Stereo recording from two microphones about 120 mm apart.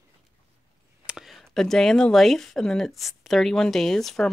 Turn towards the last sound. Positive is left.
turn(degrees=5)  # may be behind; listen again after turning